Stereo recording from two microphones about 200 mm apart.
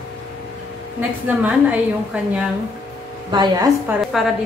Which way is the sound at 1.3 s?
10° right (ahead or behind).